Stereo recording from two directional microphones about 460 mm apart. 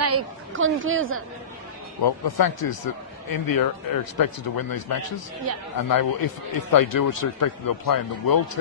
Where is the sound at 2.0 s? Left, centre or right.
Left.